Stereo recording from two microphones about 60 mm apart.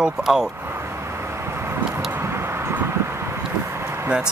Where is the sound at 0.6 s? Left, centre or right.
Right.